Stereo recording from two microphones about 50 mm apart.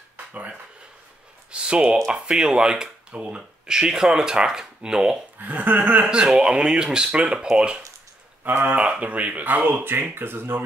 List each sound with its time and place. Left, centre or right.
0.3 s speech: right
5.4 s speech: right
6.0 s speech: centre
8.5 s speech: right
8.7 s speech: right